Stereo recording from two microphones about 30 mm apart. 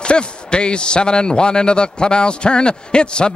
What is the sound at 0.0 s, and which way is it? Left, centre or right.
A man's voice, left.